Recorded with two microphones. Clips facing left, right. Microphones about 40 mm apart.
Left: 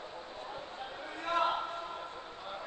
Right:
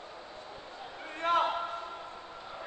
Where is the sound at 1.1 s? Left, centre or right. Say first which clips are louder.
Right 5 dB; right.